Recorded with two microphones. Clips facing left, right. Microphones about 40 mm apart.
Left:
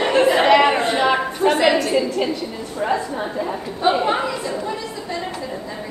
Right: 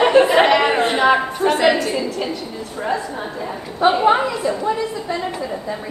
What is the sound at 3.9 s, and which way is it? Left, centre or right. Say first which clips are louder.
Speech: right 3 dB; centre.